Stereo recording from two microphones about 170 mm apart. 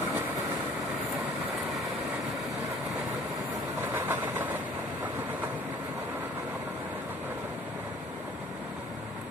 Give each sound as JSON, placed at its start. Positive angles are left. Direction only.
{"t": 3.8, "sound": "vehicle", "side_deg": -10}